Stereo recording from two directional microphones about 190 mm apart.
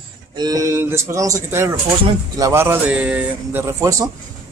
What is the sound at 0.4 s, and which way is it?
A man's voice, 20° right (ahead or behind).